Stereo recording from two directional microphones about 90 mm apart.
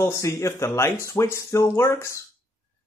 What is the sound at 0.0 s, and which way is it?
Speech, 30° left (ahead or behind).